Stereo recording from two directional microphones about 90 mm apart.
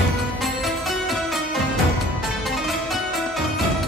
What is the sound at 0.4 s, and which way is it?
Music, centre (ahead or behind).